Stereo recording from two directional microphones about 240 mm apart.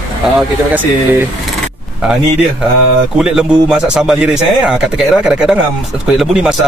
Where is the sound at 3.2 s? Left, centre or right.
Centre.